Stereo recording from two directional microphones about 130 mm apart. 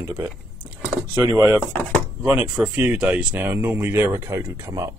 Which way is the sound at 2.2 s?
10° right (ahead or behind).